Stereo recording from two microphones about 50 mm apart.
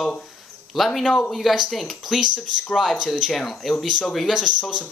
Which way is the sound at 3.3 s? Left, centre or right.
Centre.